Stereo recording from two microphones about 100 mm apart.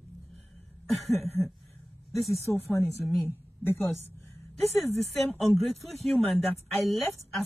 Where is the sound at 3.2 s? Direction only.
20° left (ahead or behind).